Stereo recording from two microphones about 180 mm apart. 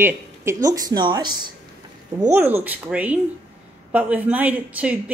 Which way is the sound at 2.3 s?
10° right (ahead or behind).